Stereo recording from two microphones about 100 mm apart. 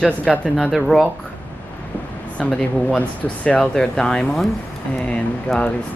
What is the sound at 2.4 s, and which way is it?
Speech, 10° left (ahead or behind).